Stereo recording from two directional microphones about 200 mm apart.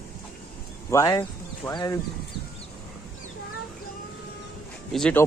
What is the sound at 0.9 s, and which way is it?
A man's voice, 15° left (ahead or behind).